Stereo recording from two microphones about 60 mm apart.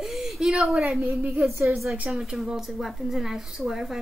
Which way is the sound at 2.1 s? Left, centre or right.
Centre.